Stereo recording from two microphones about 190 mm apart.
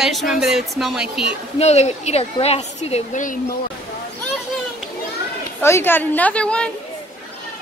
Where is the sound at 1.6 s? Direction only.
35° left (ahead or behind).